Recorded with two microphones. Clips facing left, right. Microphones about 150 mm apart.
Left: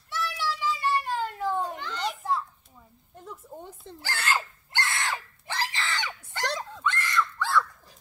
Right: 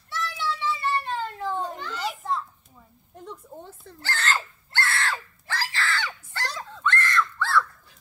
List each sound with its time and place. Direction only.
0.1 s children playing: 10° left (ahead or behind)
3.6 s screaming: 15° left (ahead or behind)